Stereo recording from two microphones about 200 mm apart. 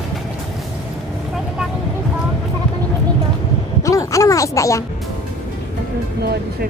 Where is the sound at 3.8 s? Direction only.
15° left (ahead or behind).